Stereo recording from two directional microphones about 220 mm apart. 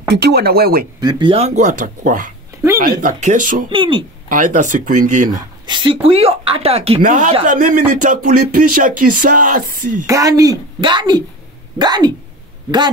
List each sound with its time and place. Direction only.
0.1 s speech: 45° right (ahead or behind)
1.0 s speech: 20° right (ahead or behind); by 3.6 s 35° right (ahead or behind)
3.7 s speech: 20° right (ahead or behind)
4.3 s speech: 35° right (ahead or behind)
5.3 s speech: 20° right (ahead or behind); by 9.9 s 40° right (ahead or behind)
10.0 s a woman's voice: 15° right (ahead or behind)